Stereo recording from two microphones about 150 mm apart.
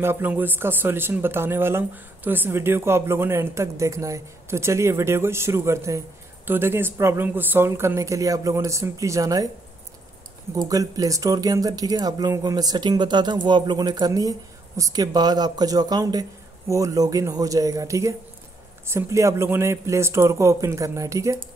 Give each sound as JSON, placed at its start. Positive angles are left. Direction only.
{"t": 0.0, "sound": "speech", "side_deg": -15}
{"t": 10.5, "sound": "speech", "side_deg": -25}